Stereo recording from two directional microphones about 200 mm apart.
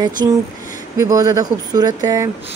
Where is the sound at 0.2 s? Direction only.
20° right (ahead or behind).